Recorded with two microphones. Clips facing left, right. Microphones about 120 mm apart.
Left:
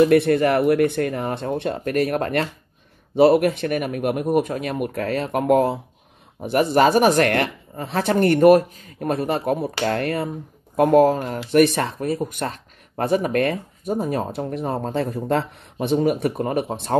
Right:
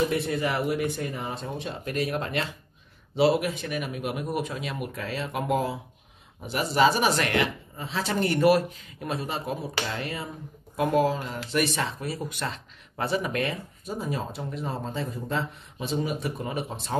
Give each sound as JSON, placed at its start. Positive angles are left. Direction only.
{"t": 0.0, "sound": "speech", "side_deg": 65}